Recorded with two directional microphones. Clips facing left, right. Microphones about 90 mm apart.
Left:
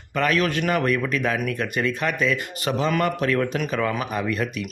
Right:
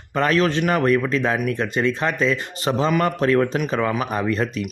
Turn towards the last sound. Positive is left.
turn(degrees=-30)  # may be behind; listen again after turning